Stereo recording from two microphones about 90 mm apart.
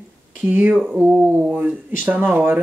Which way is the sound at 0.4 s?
20° right (ahead or behind).